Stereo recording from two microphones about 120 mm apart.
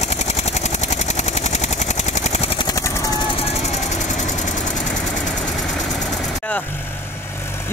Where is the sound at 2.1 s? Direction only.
65° left (ahead or behind).